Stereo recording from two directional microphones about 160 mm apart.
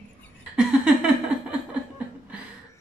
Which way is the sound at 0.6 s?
5° right (ahead or behind).